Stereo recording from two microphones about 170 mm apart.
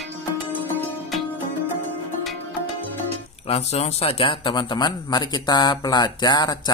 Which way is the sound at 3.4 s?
40° left (ahead or behind).